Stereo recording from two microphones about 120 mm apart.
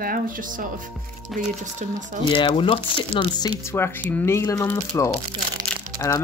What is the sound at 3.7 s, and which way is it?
Speech, 15° left (ahead or behind).